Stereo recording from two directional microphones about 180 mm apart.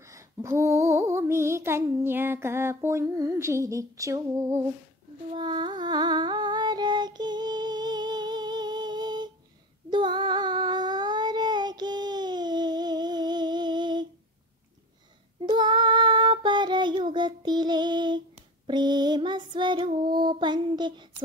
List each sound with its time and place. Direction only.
0.0 s a sound: 15° right (ahead or behind)
9.8 s child singing: 25° right (ahead or behind)
15.4 s child singing: 25° right (ahead or behind)
18.7 s music: 25° right (ahead or behind)